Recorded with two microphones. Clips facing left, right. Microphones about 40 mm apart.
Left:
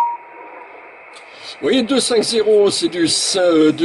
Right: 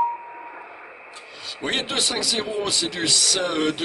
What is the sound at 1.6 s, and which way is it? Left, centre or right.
Speech, centre.